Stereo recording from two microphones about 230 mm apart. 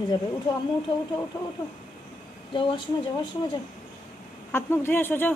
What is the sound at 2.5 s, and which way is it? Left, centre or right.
Speech, left.